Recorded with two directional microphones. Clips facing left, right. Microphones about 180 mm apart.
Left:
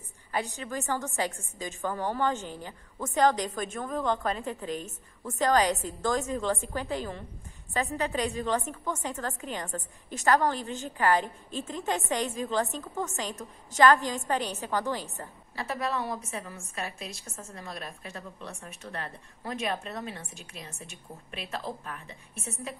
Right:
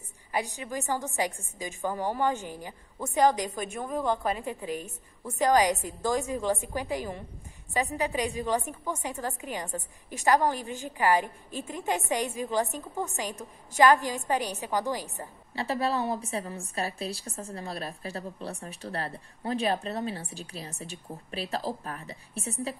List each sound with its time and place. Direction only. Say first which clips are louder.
0.3 s a woman's voice: right 1 dB; 15° right (ahead or behind)
15.5 s a woman's voice: right 3 dB; 30° right (ahead or behind)